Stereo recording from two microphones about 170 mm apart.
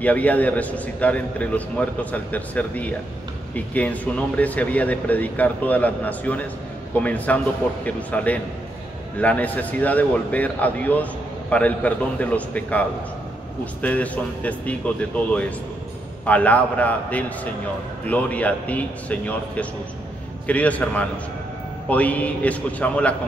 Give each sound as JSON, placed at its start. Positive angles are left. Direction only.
{"t": 0.0, "sound": "speech", "side_deg": 10}